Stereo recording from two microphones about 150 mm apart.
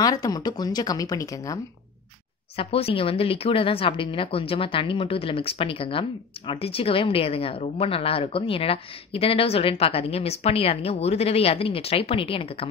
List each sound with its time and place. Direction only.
0.0 s speech: 25° left (ahead or behind)
2.5 s speech: 40° left (ahead or behind)